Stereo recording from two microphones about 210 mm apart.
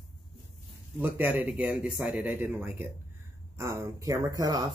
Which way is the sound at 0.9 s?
10° right (ahead or behind).